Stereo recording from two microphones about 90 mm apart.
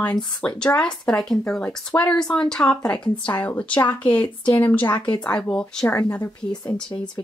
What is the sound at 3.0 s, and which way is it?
Speech, 55° left (ahead or behind).